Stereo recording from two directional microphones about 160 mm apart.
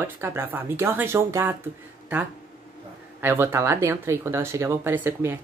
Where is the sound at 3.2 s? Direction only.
15° right (ahead or behind).